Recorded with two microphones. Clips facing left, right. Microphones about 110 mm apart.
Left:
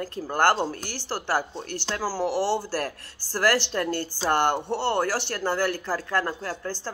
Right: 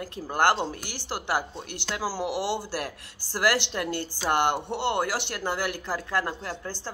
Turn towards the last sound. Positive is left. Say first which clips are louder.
# left 3 dB
turn(degrees=-15)  # may be behind; listen again after turning